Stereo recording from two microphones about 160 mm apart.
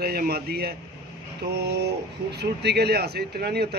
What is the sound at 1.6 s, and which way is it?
Speech, 90° right.